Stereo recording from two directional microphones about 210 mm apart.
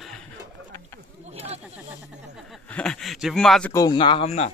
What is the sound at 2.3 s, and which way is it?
Speech, centre (ahead or behind).